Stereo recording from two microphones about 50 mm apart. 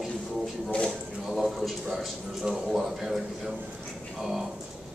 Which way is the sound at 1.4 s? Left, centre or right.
Centre.